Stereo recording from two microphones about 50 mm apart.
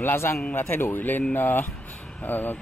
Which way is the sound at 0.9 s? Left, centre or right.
Left.